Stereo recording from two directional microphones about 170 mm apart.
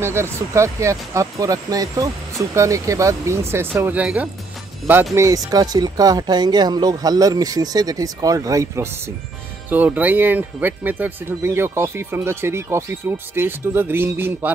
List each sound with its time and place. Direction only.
0.0 s speech: 15° right (ahead or behind)
5.1 s speech: 20° right (ahead or behind)